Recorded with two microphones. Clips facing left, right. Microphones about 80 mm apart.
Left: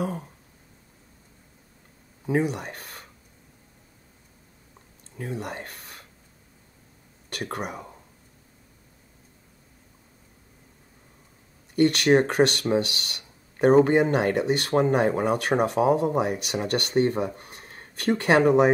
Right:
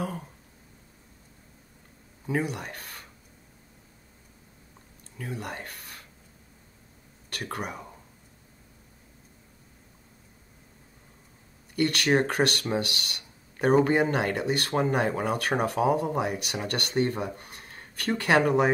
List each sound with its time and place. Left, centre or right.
2.2 s speech: left
5.1 s speech: left
11.7 s speech: left